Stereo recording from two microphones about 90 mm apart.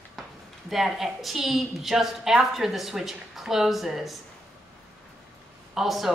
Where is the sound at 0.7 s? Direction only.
Centre (ahead or behind).